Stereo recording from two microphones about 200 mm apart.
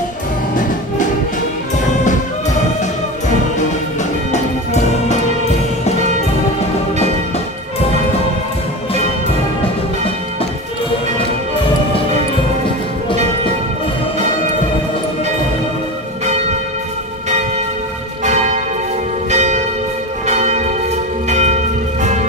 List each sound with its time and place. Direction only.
4.3 s music: 35° left (ahead or behind)
16.3 s church bell: 35° right (ahead or behind)
18.2 s church bell: 35° right (ahead or behind)
22.0 s change ringing: 35° right (ahead or behind)